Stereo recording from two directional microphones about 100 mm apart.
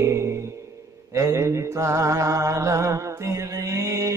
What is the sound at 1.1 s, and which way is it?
Mantra, 30° right (ahead or behind).